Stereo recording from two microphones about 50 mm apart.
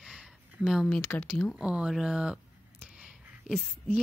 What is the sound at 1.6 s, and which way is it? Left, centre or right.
Mantra, centre.